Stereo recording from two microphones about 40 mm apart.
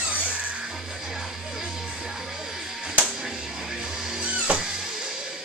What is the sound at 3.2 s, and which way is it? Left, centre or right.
Music, centre.